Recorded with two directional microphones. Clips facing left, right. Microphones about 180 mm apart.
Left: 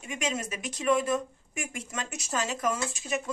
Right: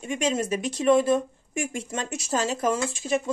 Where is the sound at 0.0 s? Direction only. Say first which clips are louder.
Right 7 dB; 30° right (ahead or behind).